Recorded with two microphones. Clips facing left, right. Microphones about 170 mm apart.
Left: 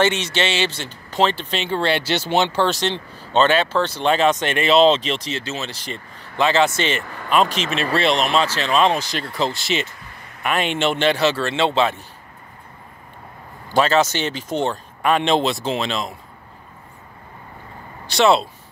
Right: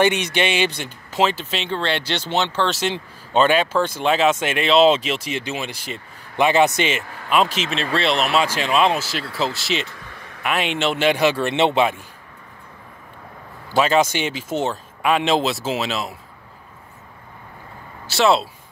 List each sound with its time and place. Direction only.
0.0 s speech: 15° right (ahead or behind)
1.7 s speech: 10° left (ahead or behind)
2.7 s speech: 10° right (ahead or behind)
6.8 s speech: 5° right (ahead or behind)
7.4 s speech: 40° left (ahead or behind)
7.9 s speech: centre (ahead or behind)
11.1 s speech: 10° right (ahead or behind)
13.7 s speech: 10° right (ahead or behind)
18.0 s speech: centre (ahead or behind)